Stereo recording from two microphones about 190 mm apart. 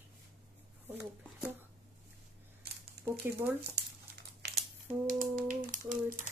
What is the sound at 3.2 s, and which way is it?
Speech, 10° right (ahead or behind).